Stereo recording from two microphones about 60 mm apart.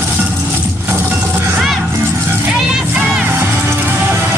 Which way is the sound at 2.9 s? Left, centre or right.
Right.